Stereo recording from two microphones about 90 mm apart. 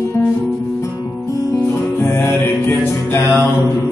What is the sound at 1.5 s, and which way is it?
Music, 30° left (ahead or behind).